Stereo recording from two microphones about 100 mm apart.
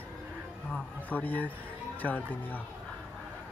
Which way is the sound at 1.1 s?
15° left (ahead or behind).